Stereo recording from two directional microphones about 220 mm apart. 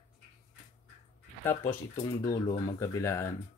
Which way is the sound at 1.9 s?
20° left (ahead or behind).